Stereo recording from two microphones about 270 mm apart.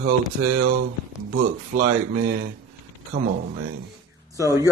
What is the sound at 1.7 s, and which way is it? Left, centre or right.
Speech, right.